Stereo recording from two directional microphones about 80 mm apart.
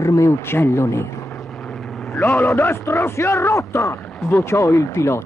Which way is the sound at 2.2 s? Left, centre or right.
Left.